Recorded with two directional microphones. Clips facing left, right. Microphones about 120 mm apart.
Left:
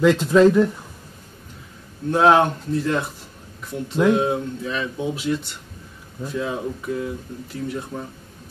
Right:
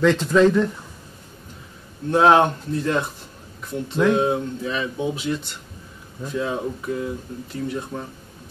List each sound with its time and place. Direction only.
0.0 s speech: 10° left (ahead or behind)
2.0 s speech: centre (ahead or behind)